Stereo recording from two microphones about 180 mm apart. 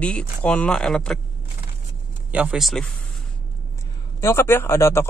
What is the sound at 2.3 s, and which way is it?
Speech, 5° right (ahead or behind).